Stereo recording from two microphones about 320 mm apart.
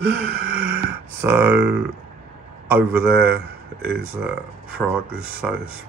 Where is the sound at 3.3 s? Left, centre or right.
Right.